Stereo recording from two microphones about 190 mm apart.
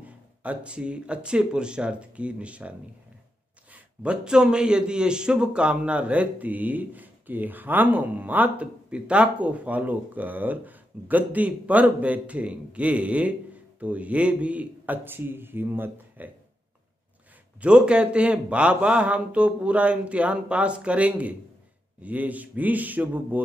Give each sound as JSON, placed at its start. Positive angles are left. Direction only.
{"t": 0.0, "sound": "speech", "side_deg": -5}
{"t": 3.7, "sound": "a man's voice", "side_deg": -5}
{"t": 17.6, "sound": "a man's voice", "side_deg": -5}